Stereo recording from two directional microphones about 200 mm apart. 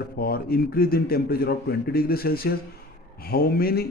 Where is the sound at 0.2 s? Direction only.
50° left (ahead or behind).